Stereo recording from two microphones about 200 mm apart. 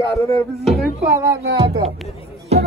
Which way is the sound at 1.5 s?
25° right (ahead or behind).